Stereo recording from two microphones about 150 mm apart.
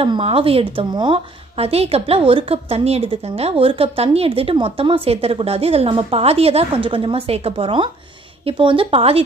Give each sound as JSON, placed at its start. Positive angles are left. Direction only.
{"t": 0.0, "sound": "a woman's voice", "side_deg": -40}